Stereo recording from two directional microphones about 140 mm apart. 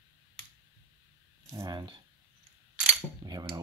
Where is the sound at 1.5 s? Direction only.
25° right (ahead or behind).